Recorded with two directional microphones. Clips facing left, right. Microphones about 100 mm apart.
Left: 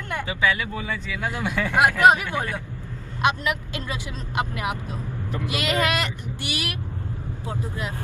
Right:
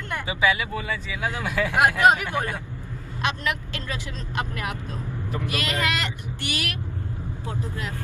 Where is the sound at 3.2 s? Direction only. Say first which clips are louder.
Left 4 dB; 20° left (ahead or behind).